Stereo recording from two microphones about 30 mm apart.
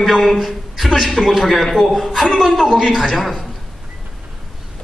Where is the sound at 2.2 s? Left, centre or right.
Centre.